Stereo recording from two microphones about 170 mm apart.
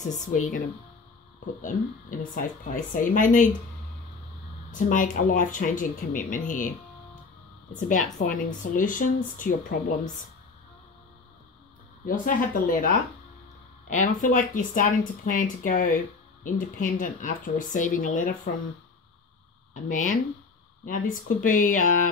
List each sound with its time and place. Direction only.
0.1 s speech: 45° left (ahead or behind)
1.6 s speech: 50° left (ahead or behind)
4.6 s speech: 50° left (ahead or behind)
7.8 s speech: 50° left (ahead or behind)
12.1 s a woman's voice: 55° left (ahead or behind)
13.8 s speech: 45° left (ahead or behind)
19.7 s speech: 50° left (ahead or behind)